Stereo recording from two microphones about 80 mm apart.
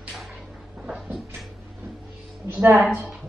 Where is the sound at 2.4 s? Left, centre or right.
Right.